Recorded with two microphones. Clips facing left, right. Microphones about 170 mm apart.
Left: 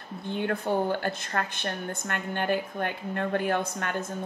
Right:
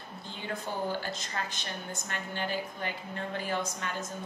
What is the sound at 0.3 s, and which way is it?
A woman's voice, 60° left (ahead or behind).